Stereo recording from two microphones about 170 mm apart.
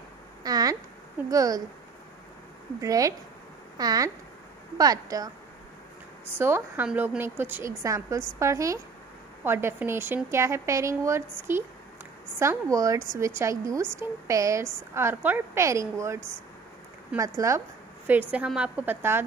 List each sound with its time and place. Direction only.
0.4 s a sound: 20° right (ahead or behind)
1.3 s speech: 20° right (ahead or behind)
2.8 s speech: 20° right (ahead or behind)
6.3 s speech: 10° right (ahead or behind)